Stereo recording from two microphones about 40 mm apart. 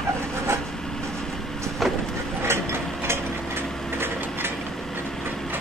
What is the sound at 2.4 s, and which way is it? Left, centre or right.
Mechanisms, right.